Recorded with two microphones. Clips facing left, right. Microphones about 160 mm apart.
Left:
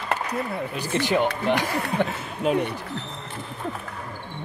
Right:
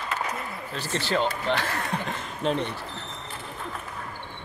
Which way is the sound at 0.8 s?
15° left (ahead or behind).